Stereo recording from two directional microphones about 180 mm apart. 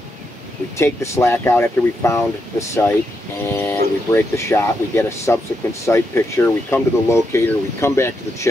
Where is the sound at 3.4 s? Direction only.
10° left (ahead or behind).